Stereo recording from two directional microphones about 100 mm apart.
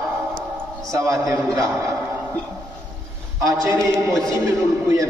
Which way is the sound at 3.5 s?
35° right (ahead or behind).